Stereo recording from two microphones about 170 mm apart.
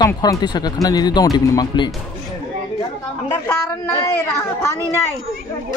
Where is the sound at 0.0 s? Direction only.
25° left (ahead or behind).